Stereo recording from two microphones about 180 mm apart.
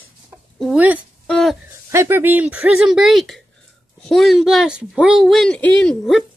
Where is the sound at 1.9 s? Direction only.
15° right (ahead or behind).